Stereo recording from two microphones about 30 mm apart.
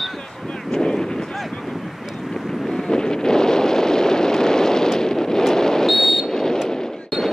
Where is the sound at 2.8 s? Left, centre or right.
Left.